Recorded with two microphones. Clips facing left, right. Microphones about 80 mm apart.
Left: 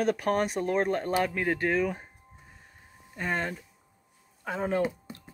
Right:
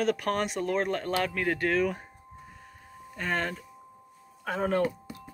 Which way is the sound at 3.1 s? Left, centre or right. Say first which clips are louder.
Even; centre.